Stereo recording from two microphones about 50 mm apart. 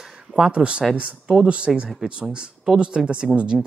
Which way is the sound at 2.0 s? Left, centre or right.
Right.